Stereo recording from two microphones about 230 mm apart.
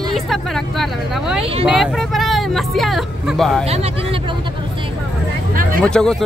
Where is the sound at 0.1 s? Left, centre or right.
Centre.